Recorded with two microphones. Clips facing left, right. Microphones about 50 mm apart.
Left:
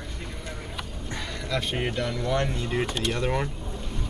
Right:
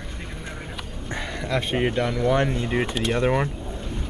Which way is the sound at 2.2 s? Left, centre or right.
Right.